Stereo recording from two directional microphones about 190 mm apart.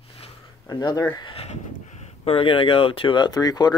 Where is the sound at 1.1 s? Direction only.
25° left (ahead or behind).